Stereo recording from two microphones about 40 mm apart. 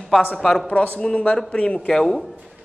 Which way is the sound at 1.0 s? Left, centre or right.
Left.